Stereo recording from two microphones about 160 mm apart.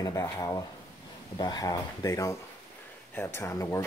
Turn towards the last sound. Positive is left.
turn(degrees=20)  # may be behind; listen again after turning